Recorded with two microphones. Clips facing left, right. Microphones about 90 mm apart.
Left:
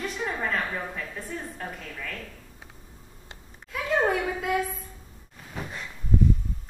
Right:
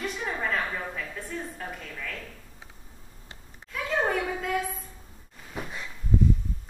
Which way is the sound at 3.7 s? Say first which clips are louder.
Left 3 dB; 5° left (ahead or behind).